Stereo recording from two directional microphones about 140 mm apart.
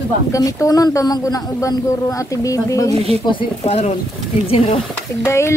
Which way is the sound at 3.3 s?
45° left (ahead or behind).